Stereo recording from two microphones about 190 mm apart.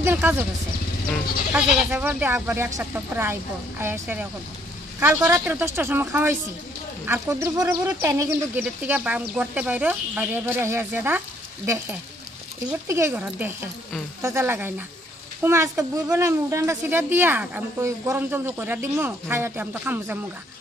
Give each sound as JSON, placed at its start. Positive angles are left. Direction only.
{"t": 0.0, "sound": "speech", "side_deg": -10}
{"t": 1.5, "sound": "speech", "side_deg": -10}